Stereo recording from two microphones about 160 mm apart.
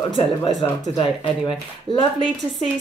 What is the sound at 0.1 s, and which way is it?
A woman's voice, 30° left (ahead or behind).